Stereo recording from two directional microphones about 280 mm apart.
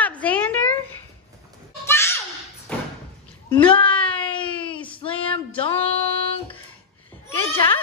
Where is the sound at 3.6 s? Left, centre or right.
Centre.